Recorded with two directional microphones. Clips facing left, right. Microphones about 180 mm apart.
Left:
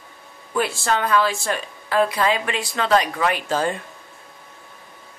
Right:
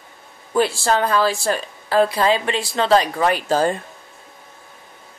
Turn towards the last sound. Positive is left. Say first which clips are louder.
# right 4 dB
turn(degrees=-35)  # may be behind; listen again after turning